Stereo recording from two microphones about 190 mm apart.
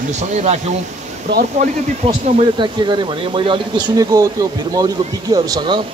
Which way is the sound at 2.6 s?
25° right (ahead or behind).